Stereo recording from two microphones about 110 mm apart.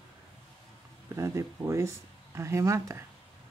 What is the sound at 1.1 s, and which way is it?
Speech, 25° right (ahead or behind).